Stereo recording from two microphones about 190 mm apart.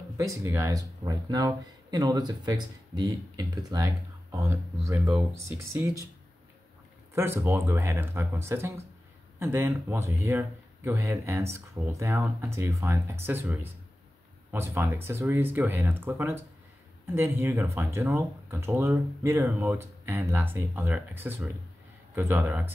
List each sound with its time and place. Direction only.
0.2 s speech: 15° right (ahead or behind)
7.2 s speech: 15° right (ahead or behind)